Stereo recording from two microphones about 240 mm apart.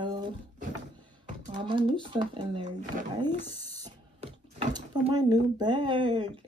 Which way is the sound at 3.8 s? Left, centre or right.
Centre.